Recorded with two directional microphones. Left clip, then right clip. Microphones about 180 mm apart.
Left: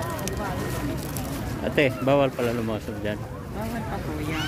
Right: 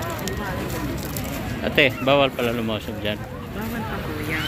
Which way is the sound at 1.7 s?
20° left (ahead or behind).